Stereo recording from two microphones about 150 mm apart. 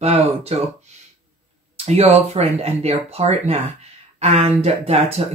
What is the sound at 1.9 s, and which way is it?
Speech, 45° right (ahead or behind).